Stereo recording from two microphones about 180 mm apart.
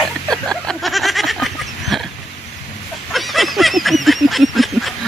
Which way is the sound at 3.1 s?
Centre (ahead or behind).